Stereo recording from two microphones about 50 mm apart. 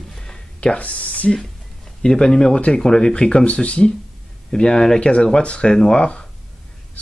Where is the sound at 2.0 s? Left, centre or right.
Centre.